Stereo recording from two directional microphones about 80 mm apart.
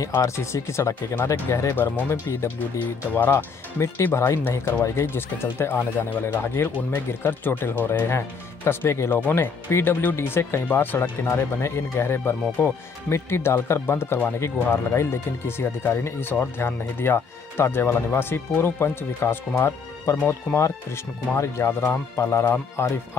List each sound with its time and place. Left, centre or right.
0.2 s speech: left
1.8 s speech: left